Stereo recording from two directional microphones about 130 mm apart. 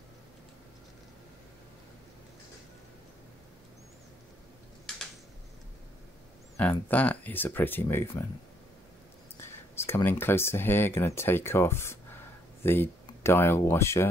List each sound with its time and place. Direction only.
6.6 s speech: 10° left (ahead or behind)
9.8 s speech: 20° left (ahead or behind)